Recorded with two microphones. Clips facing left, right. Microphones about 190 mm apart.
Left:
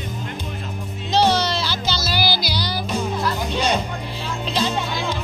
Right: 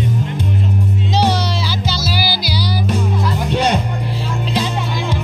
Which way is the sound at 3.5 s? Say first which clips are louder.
Right 7 dB; 65° right (ahead or behind).